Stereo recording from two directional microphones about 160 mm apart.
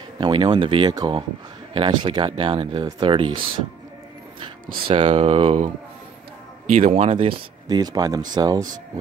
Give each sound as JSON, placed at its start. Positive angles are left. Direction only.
{"t": 0.2, "sound": "speech", "side_deg": -30}
{"t": 4.8, "sound": "speech", "side_deg": -40}
{"t": 6.7, "sound": "speech", "side_deg": -40}
{"t": 7.6, "sound": "speech", "side_deg": -25}